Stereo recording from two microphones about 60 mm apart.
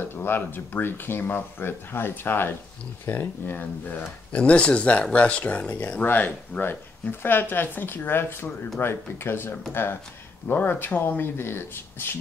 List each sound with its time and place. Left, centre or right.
0.0 s speech: left
4.3 s speech: centre; by 12.2 s left